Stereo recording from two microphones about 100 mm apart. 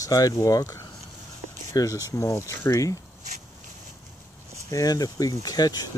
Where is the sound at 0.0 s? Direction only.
35° left (ahead or behind).